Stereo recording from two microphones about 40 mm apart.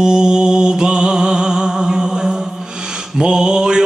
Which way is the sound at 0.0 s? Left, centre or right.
Centre.